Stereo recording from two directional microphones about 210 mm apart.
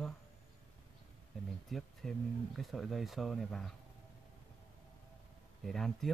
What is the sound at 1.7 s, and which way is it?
Speech, centre (ahead or behind).